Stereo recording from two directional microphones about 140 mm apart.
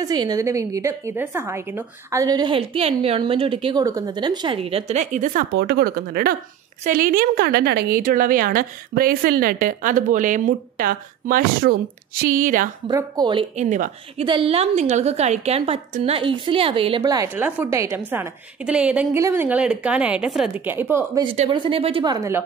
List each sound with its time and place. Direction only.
0.0 s a woman's voice: 30° right (ahead or behind)
3.8 s a woman's voice: 25° right (ahead or behind); by 5.4 s 65° right (ahead or behind)
5.9 s speech: 90° right
6.8 s a woman's voice: 80° right
12.2 s speech: 75° right (ahead or behind)
12.9 s a woman's voice: 30° right (ahead or behind)
13.6 s a woman's voice: 60° right (ahead or behind)
14.2 s a woman's voice: 40° right (ahead or behind)
17.0 s a woman's voice: 25° right (ahead or behind)
17.4 s a woman's voice: 15° right (ahead or behind)
20.6 s a woman's voice: 15° right (ahead or behind)
21.5 s a woman's voice: 40° right (ahead or behind)
22.0 s a woman's voice: 30° right (ahead or behind)